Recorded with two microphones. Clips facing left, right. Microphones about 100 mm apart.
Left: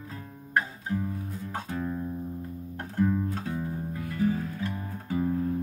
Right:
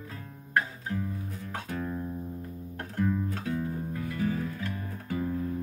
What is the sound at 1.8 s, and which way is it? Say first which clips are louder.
Music: left 2 dB; centre (ahead or behind).